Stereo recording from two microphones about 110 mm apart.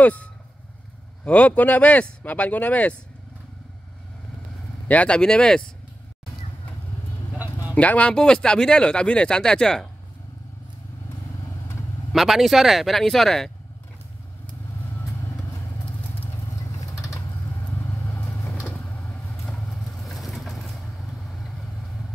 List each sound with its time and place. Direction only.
0.0 s speech: 15° left (ahead or behind)
4.8 s speech: 10° left (ahead or behind)
7.7 s speech: 15° left (ahead or behind)
12.1 s speech: centre (ahead or behind)
15.0 s vehicle: 25° left (ahead or behind)
16.5 s vehicle: 30° left (ahead or behind)
19.5 s vehicle: 5° left (ahead or behind)